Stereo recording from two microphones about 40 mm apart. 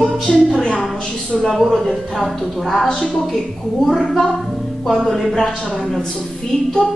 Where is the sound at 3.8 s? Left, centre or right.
Centre.